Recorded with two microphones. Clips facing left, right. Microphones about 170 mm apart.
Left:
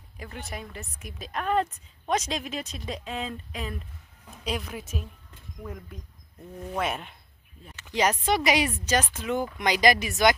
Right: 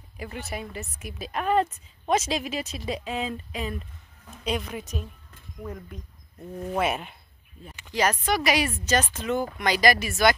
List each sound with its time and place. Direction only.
0.2 s a woman's voice: 5° right (ahead or behind)
6.8 s a woman's voice: 5° right (ahead or behind)
7.9 s speech: 20° left (ahead or behind)